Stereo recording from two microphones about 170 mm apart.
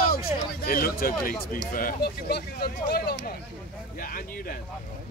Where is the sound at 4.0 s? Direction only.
55° left (ahead or behind).